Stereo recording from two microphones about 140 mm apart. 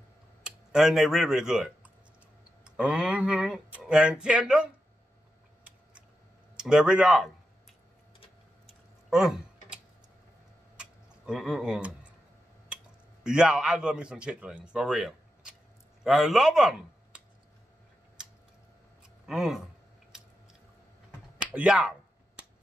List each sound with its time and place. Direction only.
0.7 s a man's voice: 5° right (ahead or behind)
6.5 s speech: 5° right (ahead or behind)
9.1 s typing: 5° right (ahead or behind)
10.8 s a sound: 5° right (ahead or behind)
13.2 s a man's voice: 5° right (ahead or behind)
18.2 s tick-tock: 5° right (ahead or behind)
19.2 s speech: centre (ahead or behind)
21.5 s a sound: 5° right (ahead or behind)